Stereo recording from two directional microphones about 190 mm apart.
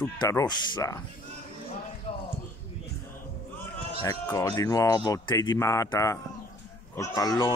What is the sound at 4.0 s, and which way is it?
Speech, 15° left (ahead or behind).